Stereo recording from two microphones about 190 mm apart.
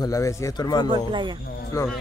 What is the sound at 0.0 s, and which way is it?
Speech, 15° left (ahead or behind).